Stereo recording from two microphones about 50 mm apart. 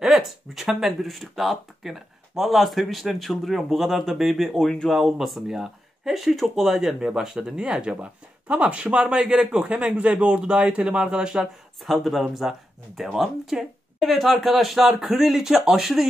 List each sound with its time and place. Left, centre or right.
0.0 s speech: centre
11.8 s speech: centre